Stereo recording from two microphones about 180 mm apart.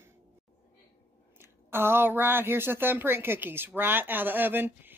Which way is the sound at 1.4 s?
10° right (ahead or behind).